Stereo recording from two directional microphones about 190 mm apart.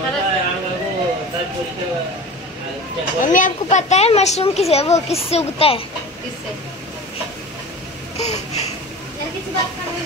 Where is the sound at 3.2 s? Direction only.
45° left (ahead or behind).